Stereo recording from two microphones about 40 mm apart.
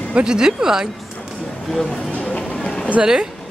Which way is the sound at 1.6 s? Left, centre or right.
Centre.